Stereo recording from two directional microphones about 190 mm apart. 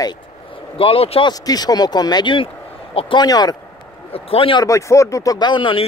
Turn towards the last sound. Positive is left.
turn(degrees=25)  # may be behind; listen again after turning